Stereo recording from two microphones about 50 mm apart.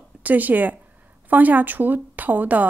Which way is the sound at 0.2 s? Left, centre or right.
Right.